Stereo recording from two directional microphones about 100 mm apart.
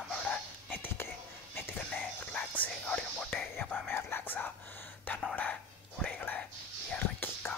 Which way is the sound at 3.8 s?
20° left (ahead or behind).